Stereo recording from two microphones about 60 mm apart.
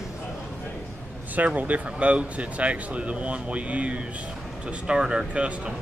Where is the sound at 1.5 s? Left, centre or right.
Right.